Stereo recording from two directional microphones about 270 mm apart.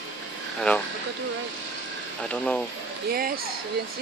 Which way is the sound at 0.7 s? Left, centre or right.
Centre.